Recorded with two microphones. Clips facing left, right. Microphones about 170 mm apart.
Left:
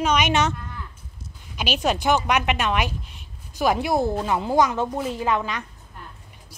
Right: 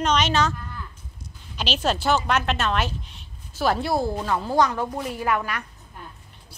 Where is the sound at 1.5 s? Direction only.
10° left (ahead or behind).